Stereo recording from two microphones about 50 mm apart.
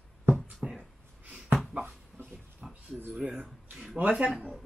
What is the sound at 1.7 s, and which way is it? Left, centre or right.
Dog, right.